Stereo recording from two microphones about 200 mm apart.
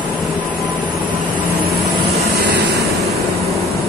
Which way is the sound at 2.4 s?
55° right (ahead or behind).